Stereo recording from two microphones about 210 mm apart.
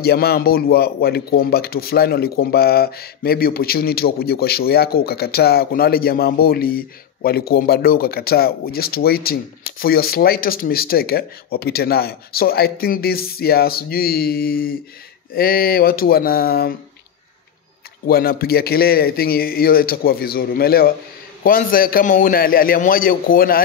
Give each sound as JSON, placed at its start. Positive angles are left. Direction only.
{"t": 0.0, "sound": "a man's voice", "side_deg": 50}
{"t": 18.0, "sound": "a man's voice", "side_deg": 45}